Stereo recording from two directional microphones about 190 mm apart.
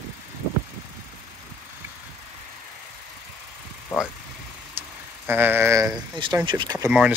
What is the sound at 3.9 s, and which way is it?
Vehicle, 15° left (ahead or behind).